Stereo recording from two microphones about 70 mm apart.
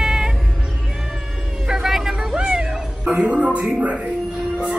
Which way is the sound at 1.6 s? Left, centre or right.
Centre.